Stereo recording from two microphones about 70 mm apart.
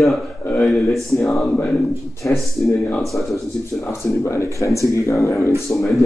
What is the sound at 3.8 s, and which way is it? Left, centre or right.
Speech, left.